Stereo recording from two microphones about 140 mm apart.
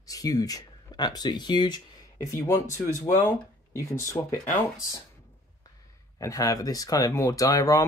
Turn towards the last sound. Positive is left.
turn(degrees=25)  # may be behind; listen again after turning